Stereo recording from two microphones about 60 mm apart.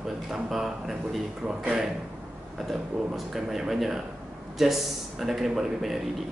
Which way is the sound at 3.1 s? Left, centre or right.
Centre.